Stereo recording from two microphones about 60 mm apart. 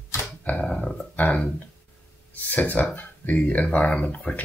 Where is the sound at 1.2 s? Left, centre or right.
Left.